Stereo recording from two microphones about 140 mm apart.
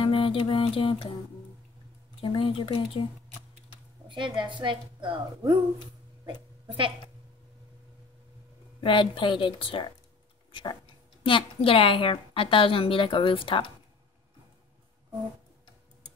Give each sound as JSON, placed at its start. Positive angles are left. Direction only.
{"t": 0.0, "sound": "speech", "side_deg": 40}
{"t": 2.2, "sound": "a woman's voice", "side_deg": 40}
{"t": 4.1, "sound": "a woman's voice", "side_deg": -35}
{"t": 8.8, "sound": "a woman's voice", "side_deg": 35}